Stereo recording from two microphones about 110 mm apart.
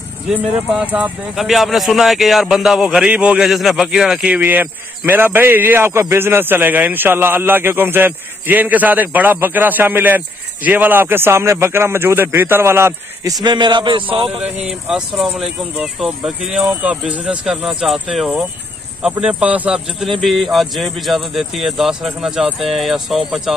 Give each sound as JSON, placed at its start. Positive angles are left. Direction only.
{"t": 1.3, "sound": "a man's voice", "side_deg": 0}
{"t": 13.4, "sound": "a man's voice", "side_deg": -45}
{"t": 14.1, "sound": "a sound", "side_deg": -55}
{"t": 14.7, "sound": "a man's voice", "side_deg": -5}
{"t": 20.2, "sound": "speech", "side_deg": 0}